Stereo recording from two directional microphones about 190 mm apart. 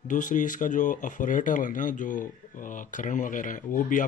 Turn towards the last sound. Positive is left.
turn(degrees=45)  # may be behind; listen again after turning